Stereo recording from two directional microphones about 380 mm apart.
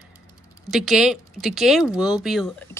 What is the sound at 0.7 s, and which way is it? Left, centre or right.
Speech, centre.